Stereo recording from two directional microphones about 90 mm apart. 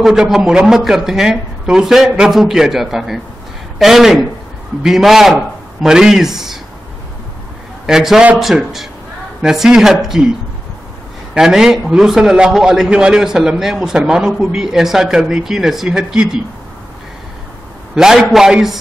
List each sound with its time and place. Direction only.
0.0 s speech: 5° right (ahead or behind)
7.8 s a man's voice: 5° right (ahead or behind)
11.3 s a man's voice: 5° right (ahead or behind)
17.9 s speech: 5° right (ahead or behind)